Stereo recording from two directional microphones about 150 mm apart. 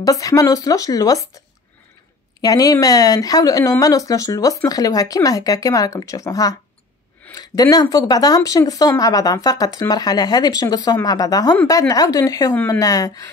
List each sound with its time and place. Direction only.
0.0 s speech: 25° left (ahead or behind)
2.4 s speech: 25° left (ahead or behind)